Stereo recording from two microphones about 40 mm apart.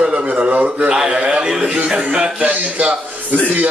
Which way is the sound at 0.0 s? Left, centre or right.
Right.